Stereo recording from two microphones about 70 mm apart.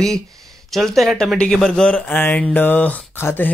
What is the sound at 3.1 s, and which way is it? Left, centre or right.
Speech, left.